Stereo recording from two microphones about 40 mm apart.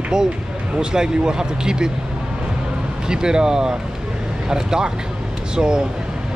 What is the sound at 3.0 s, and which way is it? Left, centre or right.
Speech, centre.